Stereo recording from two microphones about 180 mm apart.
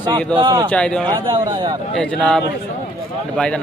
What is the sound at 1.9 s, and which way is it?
Speech, 5° left (ahead or behind).